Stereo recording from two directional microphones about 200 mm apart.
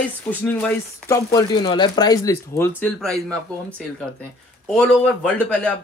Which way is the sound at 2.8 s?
5° left (ahead or behind).